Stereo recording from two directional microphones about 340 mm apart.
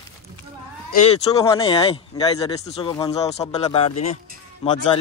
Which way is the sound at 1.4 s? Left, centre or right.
Centre.